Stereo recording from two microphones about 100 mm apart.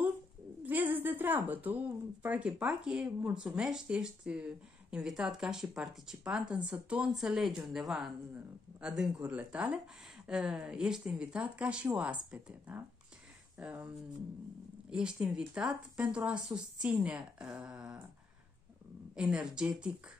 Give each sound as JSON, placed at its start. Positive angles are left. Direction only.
{"t": 0.7, "sound": "a sound", "side_deg": -15}
{"t": 2.2, "sound": "a woman's voice", "side_deg": -15}
{"t": 14.9, "sound": "speech", "side_deg": -10}
{"t": 19.1, "sound": "speech", "side_deg": -10}